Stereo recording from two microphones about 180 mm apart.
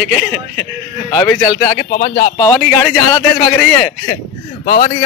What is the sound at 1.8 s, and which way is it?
Speech, 50° left (ahead or behind).